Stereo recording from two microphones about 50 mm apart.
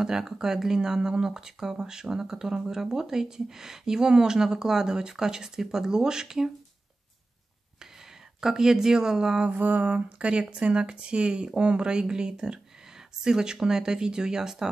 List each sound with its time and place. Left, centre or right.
0.0 s speech: centre
8.4 s speech: centre
9.5 s speech: right; by 14.7 s centre